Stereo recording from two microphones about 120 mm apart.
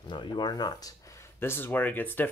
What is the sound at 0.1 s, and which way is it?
Speech, 40° left (ahead or behind).